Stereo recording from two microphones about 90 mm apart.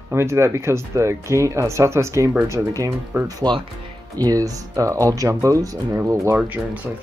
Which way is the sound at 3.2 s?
50° right (ahead or behind).